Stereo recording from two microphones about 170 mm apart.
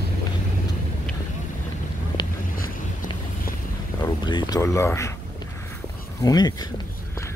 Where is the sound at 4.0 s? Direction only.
25° left (ahead or behind).